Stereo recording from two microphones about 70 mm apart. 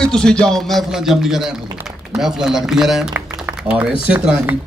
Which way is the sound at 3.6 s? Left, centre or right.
Centre.